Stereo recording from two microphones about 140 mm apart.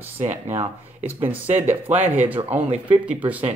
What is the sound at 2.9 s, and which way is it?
Speech, 10° right (ahead or behind).